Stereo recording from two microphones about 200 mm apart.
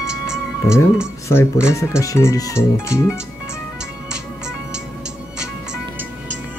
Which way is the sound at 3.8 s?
5° right (ahead or behind).